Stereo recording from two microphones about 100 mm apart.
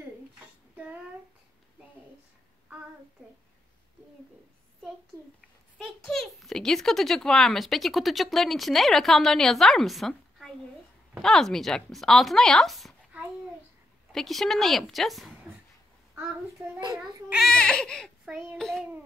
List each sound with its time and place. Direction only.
5.8 s speech: 5° left (ahead or behind)
14.1 s speech: 5° left (ahead or behind)
16.8 s a child's voice: 45° right (ahead or behind)
17.4 s speech: 5° left (ahead or behind)
18.2 s child singing: 10° right (ahead or behind)
18.8 s a sound: 15° right (ahead or behind)